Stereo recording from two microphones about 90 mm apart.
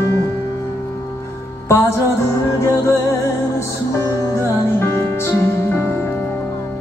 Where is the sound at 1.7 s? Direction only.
30° left (ahead or behind).